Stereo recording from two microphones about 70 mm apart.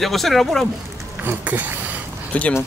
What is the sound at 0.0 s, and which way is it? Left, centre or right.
Speech, centre.